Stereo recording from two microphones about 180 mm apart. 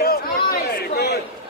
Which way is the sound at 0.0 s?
60° left (ahead or behind).